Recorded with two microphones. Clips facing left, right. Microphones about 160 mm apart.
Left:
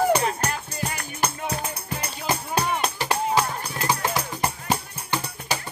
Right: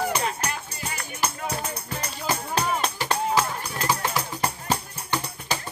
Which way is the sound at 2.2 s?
10° left (ahead or behind).